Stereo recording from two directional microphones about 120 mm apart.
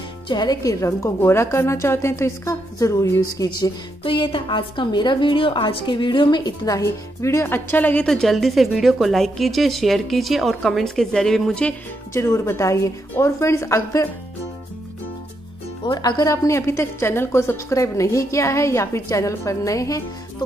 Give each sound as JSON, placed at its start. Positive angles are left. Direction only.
{"t": 0.3, "sound": "a woman's voice", "side_deg": 35}
{"t": 4.0, "sound": "a woman's voice", "side_deg": 45}
{"t": 12.1, "sound": "a woman's voice", "side_deg": 25}
{"t": 16.0, "sound": "a woman's voice", "side_deg": 35}